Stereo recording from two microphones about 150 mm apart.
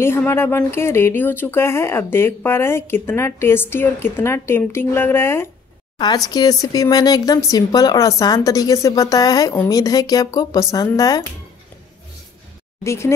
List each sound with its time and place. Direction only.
0.0 s speech: 15° left (ahead or behind)
5.9 s speech: 25° left (ahead or behind)
12.8 s speech: 20° left (ahead or behind)